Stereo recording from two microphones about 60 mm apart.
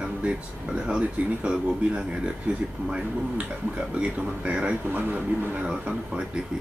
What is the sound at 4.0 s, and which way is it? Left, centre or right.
Speech, centre.